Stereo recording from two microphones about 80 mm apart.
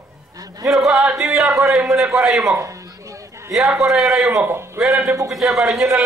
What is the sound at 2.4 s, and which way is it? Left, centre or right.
Speech, right.